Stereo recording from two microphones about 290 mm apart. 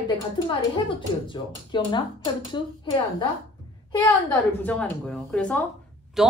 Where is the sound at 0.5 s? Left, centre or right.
Centre.